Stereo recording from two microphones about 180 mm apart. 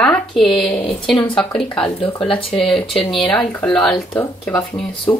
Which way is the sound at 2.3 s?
30° left (ahead or behind).